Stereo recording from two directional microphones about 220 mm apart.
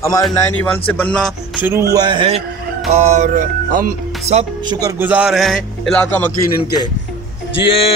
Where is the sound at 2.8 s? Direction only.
30° right (ahead or behind).